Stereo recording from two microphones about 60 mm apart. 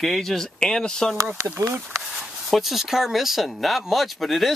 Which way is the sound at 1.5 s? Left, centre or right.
Right.